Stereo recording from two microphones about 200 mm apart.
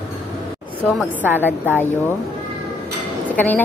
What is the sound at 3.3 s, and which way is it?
Speech, 10° left (ahead or behind).